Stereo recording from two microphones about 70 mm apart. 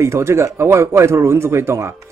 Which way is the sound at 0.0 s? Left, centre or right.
Right.